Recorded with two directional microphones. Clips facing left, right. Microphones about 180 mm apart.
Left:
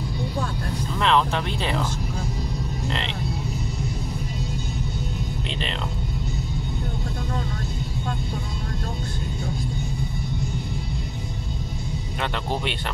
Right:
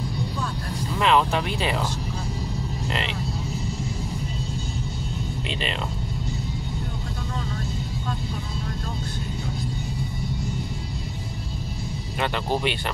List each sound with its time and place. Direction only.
0.9 s speech: 10° right (ahead or behind)
2.9 s speech: 5° right (ahead or behind)
12.2 s speech: 5° right (ahead or behind)